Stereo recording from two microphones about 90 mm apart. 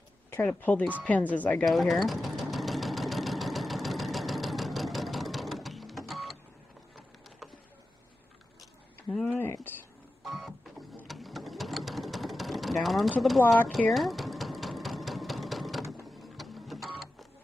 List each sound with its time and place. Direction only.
0.3 s speech: 20° left (ahead or behind)
1.6 s sewing machine: centre (ahead or behind)
9.1 s a sound: 5° left (ahead or behind)
9.4 s a sound: 20° left (ahead or behind)
10.2 s printer: centre (ahead or behind)
11.1 s sewing machine: centre (ahead or behind)
16.2 s printer: centre (ahead or behind)